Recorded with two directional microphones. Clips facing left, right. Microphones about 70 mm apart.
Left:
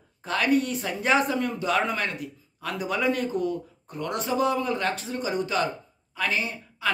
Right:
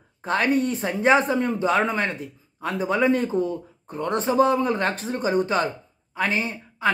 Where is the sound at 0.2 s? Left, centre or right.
Right.